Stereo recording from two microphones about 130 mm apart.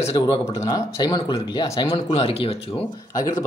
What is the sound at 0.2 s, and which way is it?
Speech, 30° left (ahead or behind).